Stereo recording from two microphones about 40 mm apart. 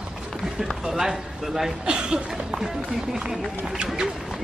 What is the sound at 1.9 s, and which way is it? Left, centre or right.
Speech, right.